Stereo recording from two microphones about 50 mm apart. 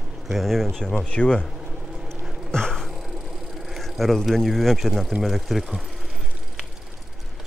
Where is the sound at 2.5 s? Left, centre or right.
Centre.